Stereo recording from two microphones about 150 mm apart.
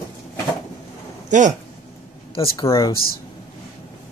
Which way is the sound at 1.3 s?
55° right (ahead or behind).